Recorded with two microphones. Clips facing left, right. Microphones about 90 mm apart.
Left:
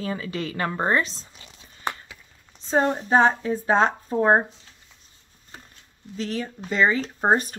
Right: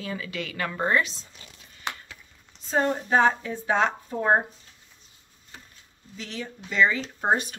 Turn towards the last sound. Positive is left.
turn(degrees=40)  # may be behind; listen again after turning